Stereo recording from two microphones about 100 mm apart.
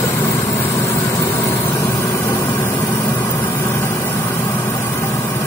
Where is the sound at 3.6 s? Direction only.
25° left (ahead or behind).